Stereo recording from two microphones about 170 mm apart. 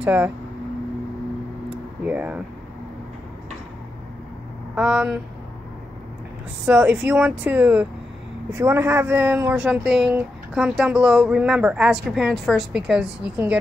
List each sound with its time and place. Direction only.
0.0 s speech: 10° right (ahead or behind)
2.0 s speech: 10° right (ahead or behind)
4.7 s speech: 5° right (ahead or behind)
6.6 s speech: 5° right (ahead or behind)